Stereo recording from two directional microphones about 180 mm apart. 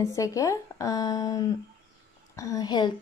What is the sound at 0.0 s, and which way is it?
Speech, 15° left (ahead or behind).